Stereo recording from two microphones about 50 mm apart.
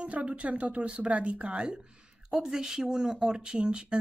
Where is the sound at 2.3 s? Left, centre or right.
Centre.